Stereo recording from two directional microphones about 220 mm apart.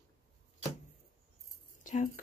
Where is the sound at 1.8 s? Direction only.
35° left (ahead or behind).